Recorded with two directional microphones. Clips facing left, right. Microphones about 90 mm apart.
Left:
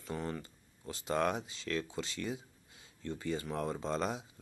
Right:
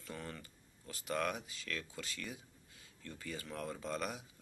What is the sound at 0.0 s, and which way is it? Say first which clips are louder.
Speech: left 8 dB; 20° left (ahead or behind).